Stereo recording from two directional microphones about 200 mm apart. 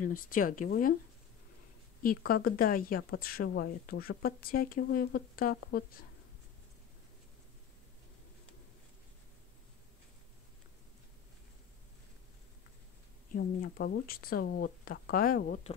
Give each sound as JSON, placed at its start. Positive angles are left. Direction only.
{"t": 0.0, "sound": "speech", "side_deg": 45}
{"t": 2.0, "sound": "speech", "side_deg": 45}
{"t": 13.3, "sound": "speech", "side_deg": 45}